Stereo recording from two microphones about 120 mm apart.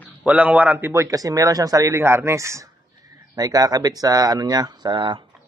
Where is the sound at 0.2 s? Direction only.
10° right (ahead or behind); by 5.2 s 40° right (ahead or behind).